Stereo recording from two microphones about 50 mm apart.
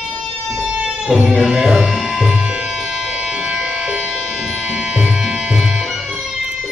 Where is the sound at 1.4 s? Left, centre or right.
Centre.